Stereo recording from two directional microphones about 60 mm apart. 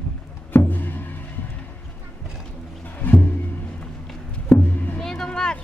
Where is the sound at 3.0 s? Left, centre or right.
Left.